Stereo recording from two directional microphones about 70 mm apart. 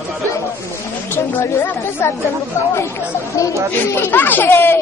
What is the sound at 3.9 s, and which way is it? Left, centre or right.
Speech, left.